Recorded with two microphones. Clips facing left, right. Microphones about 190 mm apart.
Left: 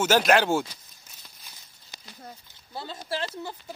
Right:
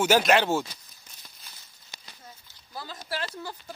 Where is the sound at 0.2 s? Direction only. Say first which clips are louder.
Left 1 dB; centre (ahead or behind).